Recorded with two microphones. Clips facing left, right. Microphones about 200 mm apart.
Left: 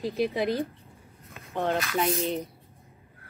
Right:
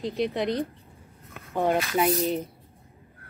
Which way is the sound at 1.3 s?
10° right (ahead or behind).